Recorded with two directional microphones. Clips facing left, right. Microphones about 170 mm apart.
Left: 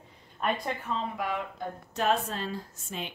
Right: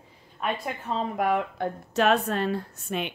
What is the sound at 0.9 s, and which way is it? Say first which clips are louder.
Speech: right 9 dB; 55° right (ahead or behind).